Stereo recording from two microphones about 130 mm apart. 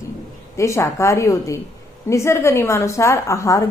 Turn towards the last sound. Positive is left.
turn(degrees=25)  # may be behind; listen again after turning